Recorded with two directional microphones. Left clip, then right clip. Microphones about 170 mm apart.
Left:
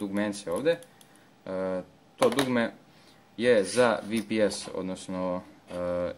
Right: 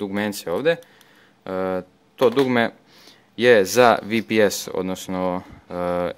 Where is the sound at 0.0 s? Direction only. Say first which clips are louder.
Right 6 dB; 30° right (ahead or behind).